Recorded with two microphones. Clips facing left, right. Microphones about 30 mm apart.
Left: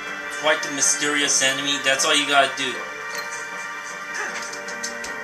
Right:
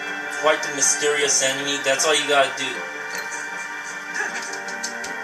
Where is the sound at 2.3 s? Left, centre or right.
Left.